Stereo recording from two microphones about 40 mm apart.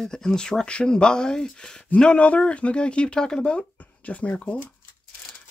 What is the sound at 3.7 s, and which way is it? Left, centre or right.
Speech, left.